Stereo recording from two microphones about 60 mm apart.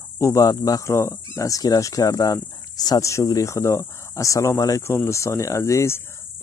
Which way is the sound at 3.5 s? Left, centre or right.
Left.